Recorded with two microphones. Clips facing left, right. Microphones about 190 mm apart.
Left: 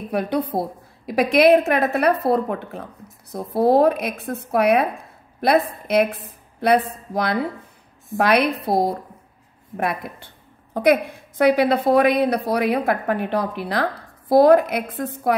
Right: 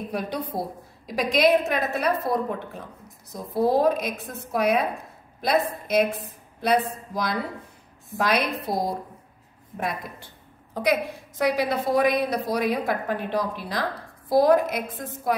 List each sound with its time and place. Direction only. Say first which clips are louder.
0.1 s a woman's voice: left 9 dB; 60° left (ahead or behind)
8.2 s a woman's voice: left 6 dB; 60° left (ahead or behind)